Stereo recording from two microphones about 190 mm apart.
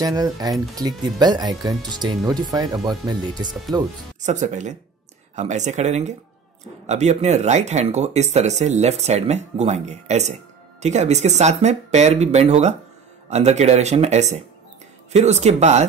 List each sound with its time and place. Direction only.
0.0 s speech: 20° right (ahead or behind)
4.2 s speech: 40° right (ahead or behind)